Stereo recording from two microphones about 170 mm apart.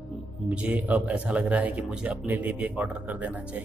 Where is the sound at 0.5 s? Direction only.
10° right (ahead or behind).